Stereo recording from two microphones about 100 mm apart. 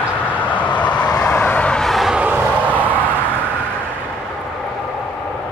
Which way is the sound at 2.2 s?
20° right (ahead or behind).